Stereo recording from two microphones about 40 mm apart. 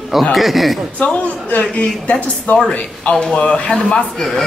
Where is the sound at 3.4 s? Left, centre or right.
Left.